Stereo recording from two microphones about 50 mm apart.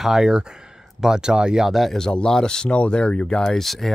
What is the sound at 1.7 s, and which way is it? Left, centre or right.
Speech, centre.